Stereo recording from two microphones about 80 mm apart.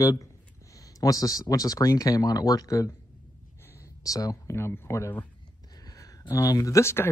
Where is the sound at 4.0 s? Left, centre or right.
Left.